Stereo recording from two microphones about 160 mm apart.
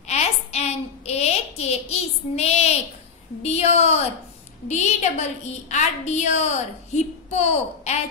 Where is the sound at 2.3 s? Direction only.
40° left (ahead or behind).